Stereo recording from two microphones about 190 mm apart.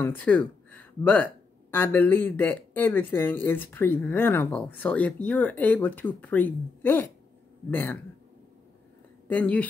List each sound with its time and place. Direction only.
0.0 s speech: 10° left (ahead or behind)
9.3 s speech: 10° left (ahead or behind)